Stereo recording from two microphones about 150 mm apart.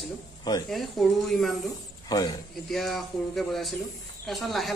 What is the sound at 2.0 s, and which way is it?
Speech, 25° left (ahead or behind).